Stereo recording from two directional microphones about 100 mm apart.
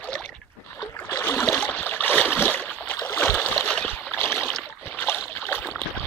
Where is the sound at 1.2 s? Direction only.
20° left (ahead or behind).